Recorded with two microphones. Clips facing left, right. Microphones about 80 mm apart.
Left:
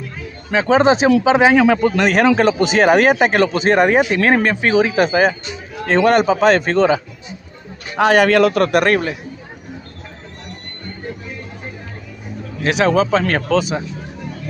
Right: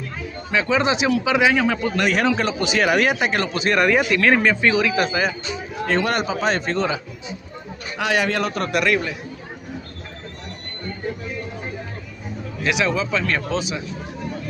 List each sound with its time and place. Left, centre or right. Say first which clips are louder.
0.6 s speech: left 7 dB; left
1.6 s a man's voice: left 8 dB; left
2.0 s speech: left 6 dB; left
3.7 s a man's voice: left 2 dB; left
8.3 s speech: left 10 dB; left
8.7 s speech: left 5 dB; left
12.6 s speech: left 7 dB; left